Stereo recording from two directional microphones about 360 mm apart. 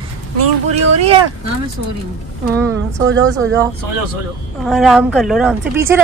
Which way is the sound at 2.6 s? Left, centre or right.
Centre.